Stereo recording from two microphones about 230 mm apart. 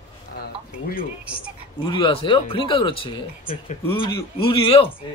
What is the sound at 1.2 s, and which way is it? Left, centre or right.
Speech, centre.